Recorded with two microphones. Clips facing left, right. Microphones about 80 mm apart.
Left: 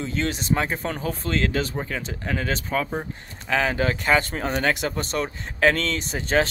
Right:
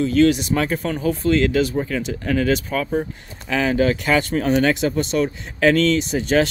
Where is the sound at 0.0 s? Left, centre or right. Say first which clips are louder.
Right 11 dB; left.